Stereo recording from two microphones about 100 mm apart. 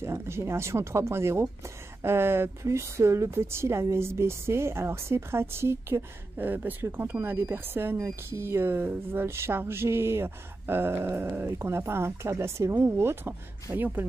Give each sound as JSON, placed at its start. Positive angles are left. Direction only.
{"t": 0.0, "sound": "speech", "side_deg": -25}